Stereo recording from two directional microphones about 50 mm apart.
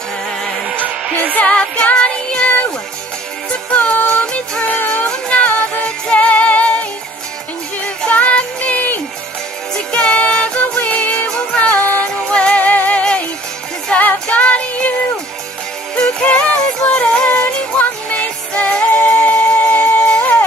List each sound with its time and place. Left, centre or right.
1.3 s music: left
3.7 s music: left
5.5 s music: left
9.9 s music: left
13.9 s music: left
16.3 s music: left